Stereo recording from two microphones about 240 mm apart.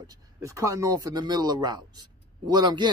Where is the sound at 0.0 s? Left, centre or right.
Centre.